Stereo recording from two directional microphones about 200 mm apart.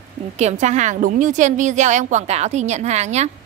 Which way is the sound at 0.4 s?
35° right (ahead or behind).